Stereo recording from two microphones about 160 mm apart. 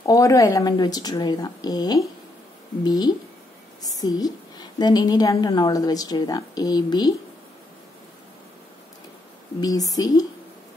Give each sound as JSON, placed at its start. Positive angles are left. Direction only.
{"t": 0.0, "sound": "a woman's voice", "side_deg": 20}
{"t": 9.6, "sound": "a woman's voice", "side_deg": 20}